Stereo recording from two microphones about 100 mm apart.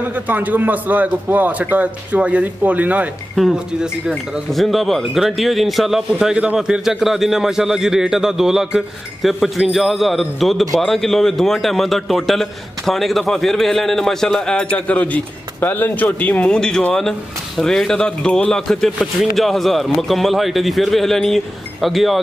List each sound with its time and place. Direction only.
0.1 s a man's voice: 15° right (ahead or behind)
3.3 s a man's voice: 5° right (ahead or behind)